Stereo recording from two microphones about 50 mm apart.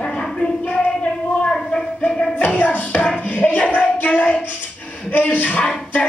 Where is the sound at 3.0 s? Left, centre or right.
Left.